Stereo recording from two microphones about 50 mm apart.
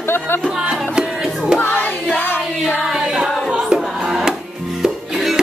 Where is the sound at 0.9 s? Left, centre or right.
Centre.